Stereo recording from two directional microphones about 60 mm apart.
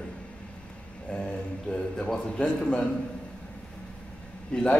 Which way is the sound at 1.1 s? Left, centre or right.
Centre.